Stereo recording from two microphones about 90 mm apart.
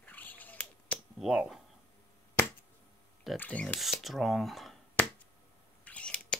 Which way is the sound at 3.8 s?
Centre (ahead or behind).